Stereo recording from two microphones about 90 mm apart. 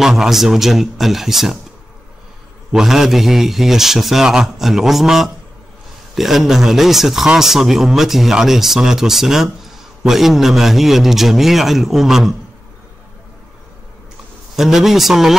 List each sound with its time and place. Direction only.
0.0 s a man's voice: 5° right (ahead or behind)
2.7 s a man's voice: 5° right (ahead or behind)
14.5 s a man's voice: 5° right (ahead or behind)